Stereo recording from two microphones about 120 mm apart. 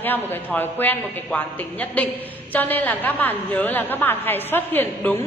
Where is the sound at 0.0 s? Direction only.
15° left (ahead or behind).